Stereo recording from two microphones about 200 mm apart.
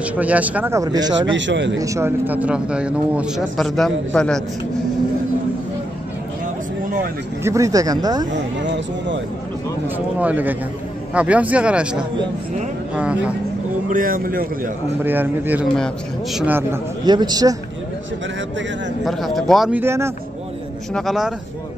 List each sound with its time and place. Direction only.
0.0 s speech: 5° right (ahead or behind)
1.3 s speech: 65° right (ahead or behind)
1.8 s a man's voice: 15° right (ahead or behind); by 4.4 s 5° left (ahead or behind)
7.4 s speech: 15° right (ahead or behind)
8.6 s speech: 60° right (ahead or behind)
9.8 s a man's voice: 10° right (ahead or behind)
13.9 s a man's voice: 45° right (ahead or behind)
15.0 s speech: 10° right (ahead or behind)
19.0 s a man's voice: centre (ahead or behind)
20.9 s a man's voice: centre (ahead or behind)